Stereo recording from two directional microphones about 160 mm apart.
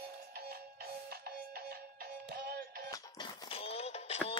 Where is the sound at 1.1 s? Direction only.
75° right (ahead or behind).